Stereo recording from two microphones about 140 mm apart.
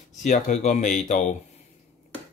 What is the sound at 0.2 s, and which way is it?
Speech, 60° left (ahead or behind).